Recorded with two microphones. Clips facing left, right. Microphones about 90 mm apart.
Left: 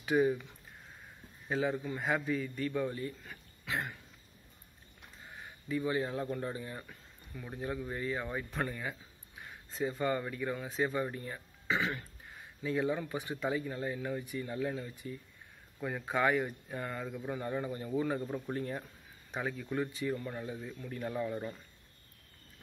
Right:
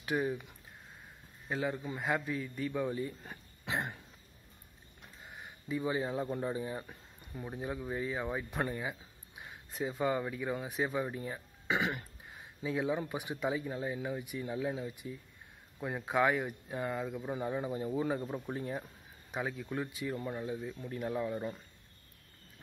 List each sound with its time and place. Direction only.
0.0 s speech: centre (ahead or behind)
1.5 s speech: centre (ahead or behind); by 4.0 s 20° right (ahead or behind)
5.3 s speech: 15° right (ahead or behind)